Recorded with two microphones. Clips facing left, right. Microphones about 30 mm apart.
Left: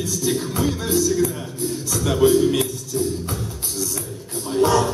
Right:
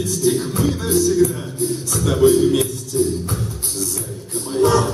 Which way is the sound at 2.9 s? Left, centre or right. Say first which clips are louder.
Right 4 dB; centre.